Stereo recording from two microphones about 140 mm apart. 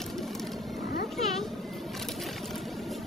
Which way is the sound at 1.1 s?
Centre (ahead or behind).